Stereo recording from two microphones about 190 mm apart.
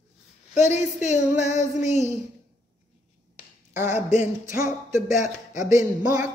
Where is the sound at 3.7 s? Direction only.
15° right (ahead or behind).